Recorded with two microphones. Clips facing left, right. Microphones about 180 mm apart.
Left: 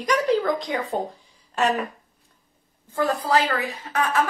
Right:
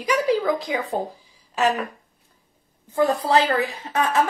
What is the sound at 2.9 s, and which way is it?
A woman's voice, 20° right (ahead or behind).